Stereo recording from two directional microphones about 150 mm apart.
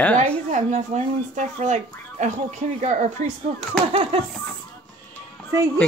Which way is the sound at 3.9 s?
40° right (ahead or behind).